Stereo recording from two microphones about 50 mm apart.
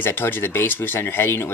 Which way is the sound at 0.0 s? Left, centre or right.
Left.